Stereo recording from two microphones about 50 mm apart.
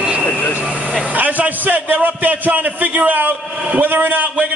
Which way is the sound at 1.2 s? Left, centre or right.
Right.